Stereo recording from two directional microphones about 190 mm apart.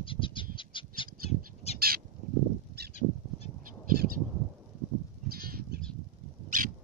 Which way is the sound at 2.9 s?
35° left (ahead or behind).